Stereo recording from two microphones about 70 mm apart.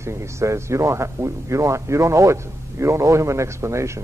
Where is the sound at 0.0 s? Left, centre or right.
Right.